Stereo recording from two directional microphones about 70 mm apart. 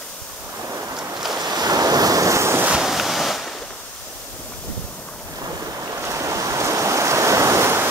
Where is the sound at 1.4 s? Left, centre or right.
Right.